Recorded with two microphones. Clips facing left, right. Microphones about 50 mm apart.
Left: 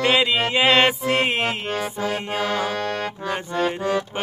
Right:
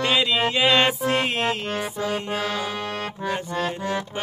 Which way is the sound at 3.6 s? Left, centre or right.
Centre.